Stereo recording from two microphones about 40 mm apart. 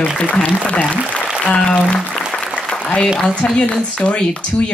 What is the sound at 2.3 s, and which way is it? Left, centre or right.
Applause, centre.